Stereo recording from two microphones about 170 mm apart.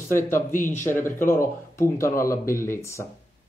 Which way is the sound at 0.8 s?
15° left (ahead or behind).